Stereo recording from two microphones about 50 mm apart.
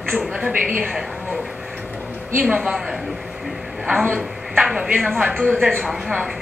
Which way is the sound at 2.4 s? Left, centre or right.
Centre.